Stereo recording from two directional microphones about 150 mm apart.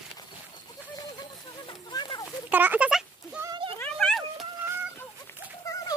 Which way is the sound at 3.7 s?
10° left (ahead or behind).